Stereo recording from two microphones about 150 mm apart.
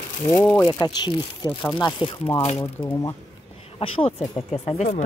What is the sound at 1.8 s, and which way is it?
Speech, 30° left (ahead or behind).